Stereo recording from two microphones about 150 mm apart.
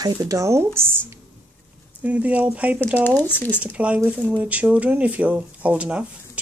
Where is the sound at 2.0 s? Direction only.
10° right (ahead or behind).